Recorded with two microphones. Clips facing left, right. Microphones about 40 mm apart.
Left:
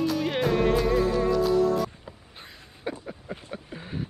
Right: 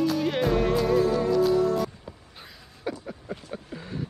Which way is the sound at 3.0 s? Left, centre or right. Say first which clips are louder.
Right 1 dB; centre.